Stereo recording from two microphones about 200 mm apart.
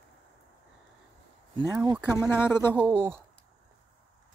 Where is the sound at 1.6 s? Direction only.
15° right (ahead or behind).